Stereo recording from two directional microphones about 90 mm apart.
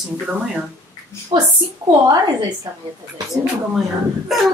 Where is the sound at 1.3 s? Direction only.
85° right.